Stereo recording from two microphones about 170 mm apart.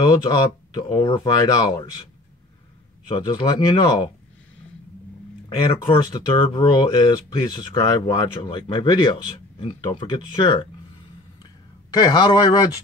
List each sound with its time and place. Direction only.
0.1 s speech: 25° left (ahead or behind)
3.1 s speech: 25° left (ahead or behind)
5.9 s speech: 30° left (ahead or behind)
11.9 s speech: 25° left (ahead or behind)